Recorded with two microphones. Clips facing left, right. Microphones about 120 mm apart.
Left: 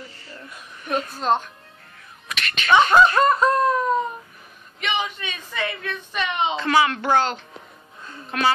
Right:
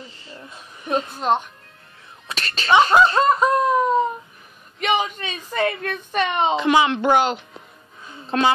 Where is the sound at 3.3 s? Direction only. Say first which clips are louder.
Right 1 dB; 15° right (ahead or behind).